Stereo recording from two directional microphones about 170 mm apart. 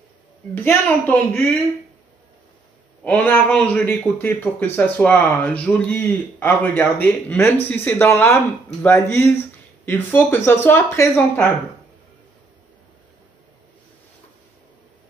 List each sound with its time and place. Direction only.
0.6 s a man's voice: 10° left (ahead or behind)
3.0 s a man's voice: 10° left (ahead or behind)